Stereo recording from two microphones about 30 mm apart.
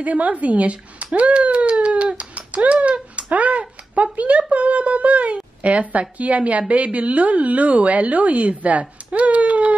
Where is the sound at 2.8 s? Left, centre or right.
Right.